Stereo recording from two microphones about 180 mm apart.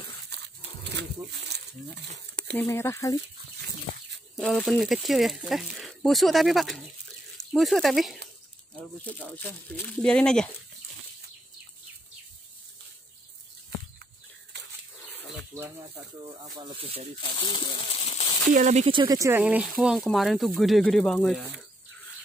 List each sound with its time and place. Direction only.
1.5 s a sound: 65° right (ahead or behind)
2.5 s speech: 15° left (ahead or behind)
4.4 s speech: centre (ahead or behind)
14.5 s bird flight: 75° right (ahead or behind)
16.5 s speech: 25° right (ahead or behind)
17.4 s speech: 30° left (ahead or behind)
18.5 s speech: 40° right (ahead or behind)
18.9 s speech: 20° right (ahead or behind); by 21.4 s 5° left (ahead or behind)